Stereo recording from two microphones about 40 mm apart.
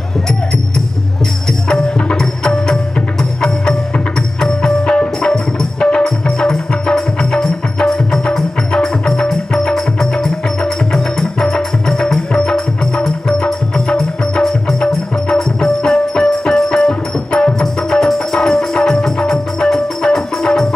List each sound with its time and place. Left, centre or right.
2.1 s music: centre
6.0 s music: centre